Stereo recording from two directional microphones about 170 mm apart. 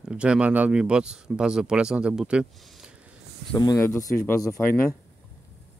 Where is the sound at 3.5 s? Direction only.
20° left (ahead or behind).